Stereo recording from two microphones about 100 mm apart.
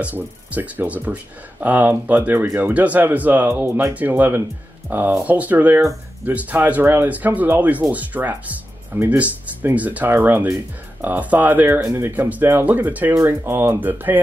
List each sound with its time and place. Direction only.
0.0 s speech: 20° right (ahead or behind)
13.1 s speech: 30° right (ahead or behind)